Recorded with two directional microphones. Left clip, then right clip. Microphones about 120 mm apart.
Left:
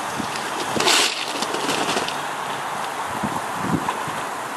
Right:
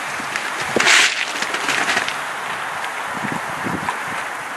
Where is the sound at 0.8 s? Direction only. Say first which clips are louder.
Right 5 dB; 25° left (ahead or behind).